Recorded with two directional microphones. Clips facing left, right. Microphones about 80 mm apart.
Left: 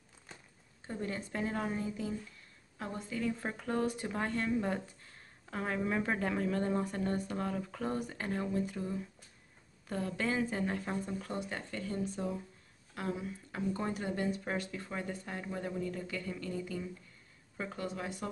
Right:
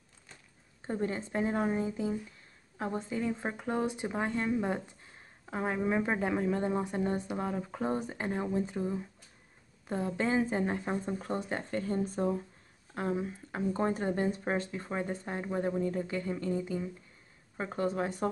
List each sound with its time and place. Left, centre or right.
0.8 s speech: right
12.9 s speech: right